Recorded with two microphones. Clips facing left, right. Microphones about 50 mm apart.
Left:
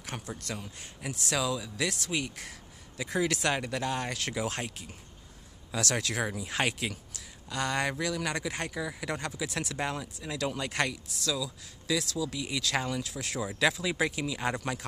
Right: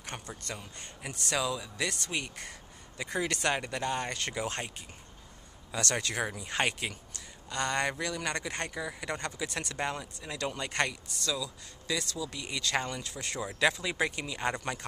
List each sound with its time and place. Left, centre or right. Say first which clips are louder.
0.0 s speech: left 2 dB; centre